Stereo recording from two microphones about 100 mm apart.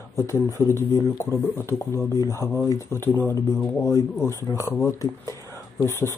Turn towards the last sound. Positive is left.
turn(degrees=20)  # may be behind; listen again after turning